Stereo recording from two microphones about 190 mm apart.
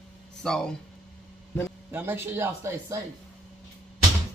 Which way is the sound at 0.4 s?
Centre (ahead or behind).